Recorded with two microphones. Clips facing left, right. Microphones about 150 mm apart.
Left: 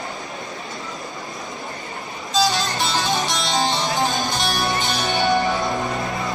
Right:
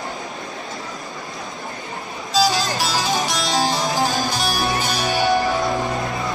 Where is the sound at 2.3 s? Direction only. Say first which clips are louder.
Right 2 dB; centre (ahead or behind).